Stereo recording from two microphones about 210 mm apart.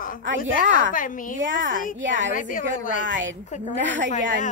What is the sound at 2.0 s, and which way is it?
A woman's voice, 60° right (ahead or behind).